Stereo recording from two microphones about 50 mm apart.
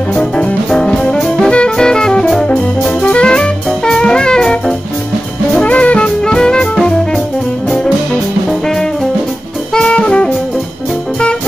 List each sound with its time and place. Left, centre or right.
0.7 s music: centre
5.6 s music: left
9.8 s jazz: centre